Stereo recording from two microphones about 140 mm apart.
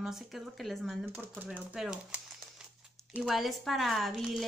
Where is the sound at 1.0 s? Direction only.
15° right (ahead or behind).